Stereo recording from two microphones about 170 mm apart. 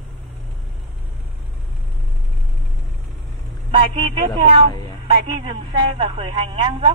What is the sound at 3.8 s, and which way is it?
Speech, 35° right (ahead or behind).